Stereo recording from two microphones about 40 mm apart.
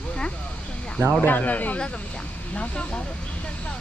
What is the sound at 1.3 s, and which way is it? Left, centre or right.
Speech, left.